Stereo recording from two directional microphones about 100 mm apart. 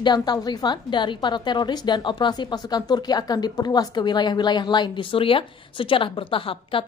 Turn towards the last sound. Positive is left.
turn(degrees=60)  # may be behind; listen again after turning